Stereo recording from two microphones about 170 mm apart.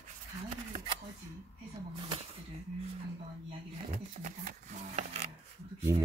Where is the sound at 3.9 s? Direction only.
45° right (ahead or behind).